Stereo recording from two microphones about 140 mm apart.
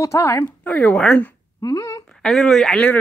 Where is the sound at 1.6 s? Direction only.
25° left (ahead or behind).